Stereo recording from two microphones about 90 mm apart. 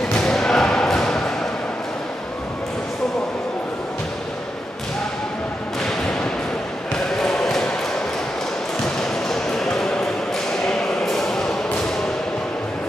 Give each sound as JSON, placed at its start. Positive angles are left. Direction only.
{"t": 0.2, "sound": "thump", "side_deg": 5}
{"t": 7.2, "sound": "basketball bounce", "side_deg": 5}
{"t": 8.8, "sound": "basketball bounce", "side_deg": 5}
{"t": 10.7, "sound": "a sound", "side_deg": 5}